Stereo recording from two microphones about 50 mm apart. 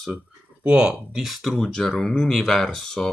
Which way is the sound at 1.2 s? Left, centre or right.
Centre.